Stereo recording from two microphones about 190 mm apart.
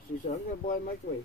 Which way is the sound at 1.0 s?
45° left (ahead or behind).